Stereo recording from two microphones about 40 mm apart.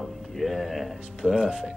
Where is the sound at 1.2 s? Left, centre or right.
Right.